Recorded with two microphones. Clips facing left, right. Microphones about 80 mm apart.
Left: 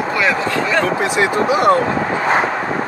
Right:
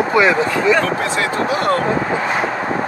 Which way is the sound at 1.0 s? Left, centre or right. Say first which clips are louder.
Left 3 dB; centre.